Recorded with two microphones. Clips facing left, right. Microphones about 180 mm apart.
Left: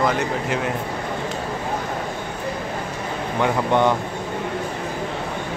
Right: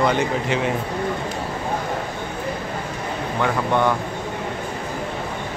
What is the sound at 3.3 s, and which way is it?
Speech, 20° left (ahead or behind).